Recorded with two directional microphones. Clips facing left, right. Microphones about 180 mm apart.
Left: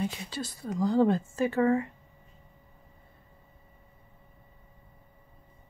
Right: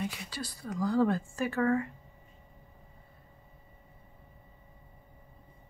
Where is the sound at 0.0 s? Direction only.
25° left (ahead or behind).